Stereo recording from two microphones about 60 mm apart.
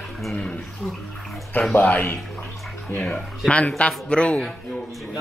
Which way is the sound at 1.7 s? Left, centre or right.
Left.